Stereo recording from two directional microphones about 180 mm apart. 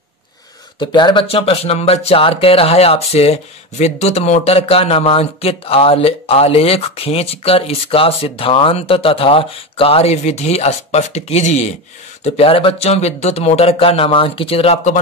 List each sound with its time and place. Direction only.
0.7 s speech: 25° left (ahead or behind)